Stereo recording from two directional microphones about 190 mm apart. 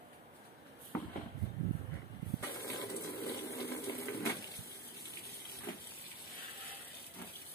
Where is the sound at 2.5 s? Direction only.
55° left (ahead or behind).